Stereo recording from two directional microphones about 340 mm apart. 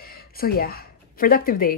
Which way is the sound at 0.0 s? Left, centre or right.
Left.